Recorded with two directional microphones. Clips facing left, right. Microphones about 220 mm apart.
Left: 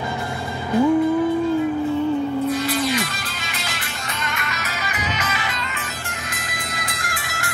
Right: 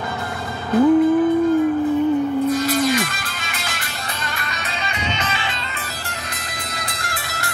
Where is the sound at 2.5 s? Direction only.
45° right (ahead or behind).